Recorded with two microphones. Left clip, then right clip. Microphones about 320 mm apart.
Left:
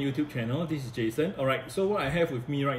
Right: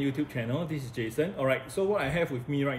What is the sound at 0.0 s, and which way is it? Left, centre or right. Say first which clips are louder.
Speech: even; centre.